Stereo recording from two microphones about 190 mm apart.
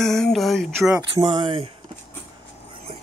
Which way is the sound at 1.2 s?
25° right (ahead or behind).